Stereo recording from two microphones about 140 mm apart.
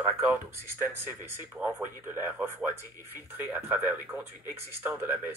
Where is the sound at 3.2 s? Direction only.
15° right (ahead or behind).